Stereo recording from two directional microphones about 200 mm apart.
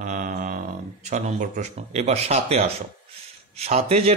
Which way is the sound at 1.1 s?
35° right (ahead or behind).